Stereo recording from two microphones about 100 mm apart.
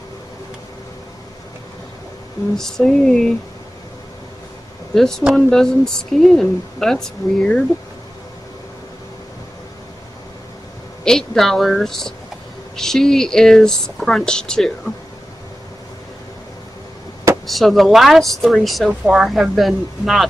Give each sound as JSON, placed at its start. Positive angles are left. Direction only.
{"t": 2.5, "sound": "speech", "side_deg": 5}
{"t": 5.3, "sound": "speech", "side_deg": 5}
{"t": 11.1, "sound": "speech", "side_deg": 5}
{"t": 17.5, "sound": "speech", "side_deg": 0}
{"t": 18.9, "sound": "speech", "side_deg": -10}